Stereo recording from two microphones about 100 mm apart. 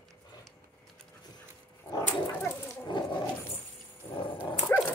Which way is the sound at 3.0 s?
50° left (ahead or behind).